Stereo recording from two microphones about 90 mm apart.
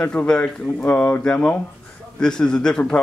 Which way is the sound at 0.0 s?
15° left (ahead or behind).